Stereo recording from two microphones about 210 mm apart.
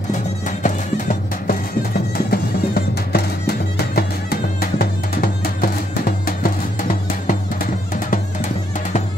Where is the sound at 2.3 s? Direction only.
45° left (ahead or behind).